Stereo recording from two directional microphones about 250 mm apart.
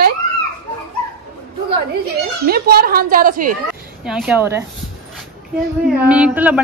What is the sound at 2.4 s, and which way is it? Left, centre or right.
A woman's voice, right.